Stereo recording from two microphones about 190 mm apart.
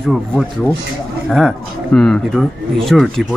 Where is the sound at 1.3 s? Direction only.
5° left (ahead or behind).